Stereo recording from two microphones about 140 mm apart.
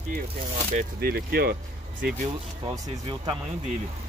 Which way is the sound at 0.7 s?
90° right.